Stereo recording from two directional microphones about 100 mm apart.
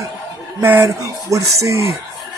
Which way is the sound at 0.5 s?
25° right (ahead or behind).